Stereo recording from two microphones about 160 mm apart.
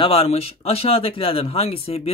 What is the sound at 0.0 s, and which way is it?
Speech, 35° left (ahead or behind).